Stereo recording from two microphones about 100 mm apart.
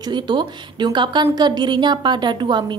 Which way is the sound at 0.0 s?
50° right (ahead or behind).